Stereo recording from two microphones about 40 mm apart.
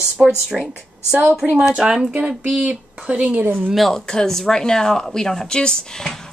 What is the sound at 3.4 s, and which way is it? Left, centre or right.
Speech, right.